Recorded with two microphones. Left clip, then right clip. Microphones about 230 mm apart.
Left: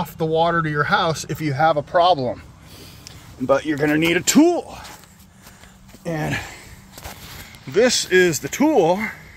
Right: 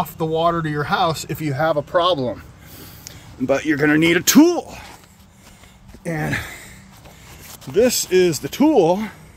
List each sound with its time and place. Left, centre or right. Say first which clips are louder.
0.0 s speech: even; centre
6.0 s speech: right 1 dB; centre
7.7 s speech: even; centre
8.6 s speech: right 1 dB; right